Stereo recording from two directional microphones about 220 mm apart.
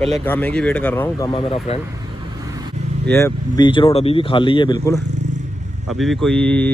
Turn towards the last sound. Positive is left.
turn(degrees=5)  # may be behind; listen again after turning